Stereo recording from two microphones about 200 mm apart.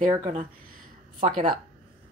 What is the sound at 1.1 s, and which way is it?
Speech, 35° right (ahead or behind).